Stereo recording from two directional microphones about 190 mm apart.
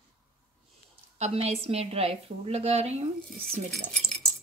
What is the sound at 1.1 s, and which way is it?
A woman's voice, 35° right (ahead or behind).